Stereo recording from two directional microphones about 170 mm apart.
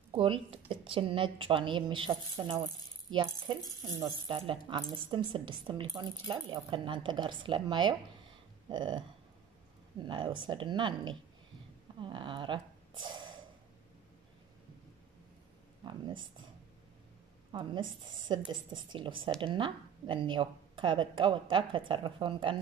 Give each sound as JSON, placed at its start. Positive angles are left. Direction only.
{"t": 0.1, "sound": "speech", "side_deg": -30}
{"t": 8.6, "sound": "a sound", "side_deg": -25}
{"t": 9.9, "sound": "speech", "side_deg": -30}
{"t": 15.8, "sound": "speech", "side_deg": -30}
{"t": 17.5, "sound": "a woman's voice", "side_deg": -25}